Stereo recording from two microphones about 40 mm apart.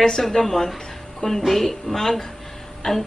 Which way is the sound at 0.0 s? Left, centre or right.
Centre.